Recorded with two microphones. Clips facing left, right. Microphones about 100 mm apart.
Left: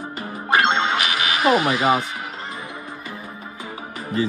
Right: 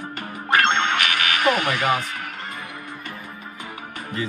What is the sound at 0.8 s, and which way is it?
Music, 15° left (ahead or behind).